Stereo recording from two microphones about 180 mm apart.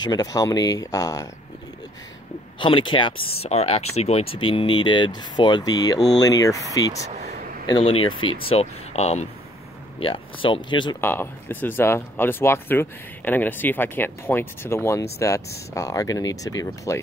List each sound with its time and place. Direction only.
0.0 s speech: 20° left (ahead or behind)
2.6 s speech: 25° left (ahead or behind)
11.0 s speech: 10° left (ahead or behind)